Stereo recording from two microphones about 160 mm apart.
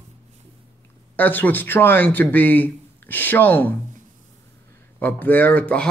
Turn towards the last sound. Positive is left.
turn(degrees=10)  # may be behind; listen again after turning